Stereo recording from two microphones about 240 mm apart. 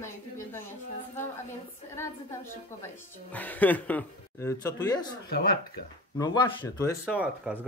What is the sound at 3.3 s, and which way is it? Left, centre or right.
Speech, centre.